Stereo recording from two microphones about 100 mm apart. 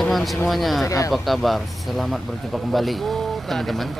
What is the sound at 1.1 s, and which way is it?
Speech, centre (ahead or behind).